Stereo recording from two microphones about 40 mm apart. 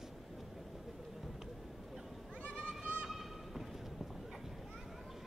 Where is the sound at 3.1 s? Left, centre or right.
Centre.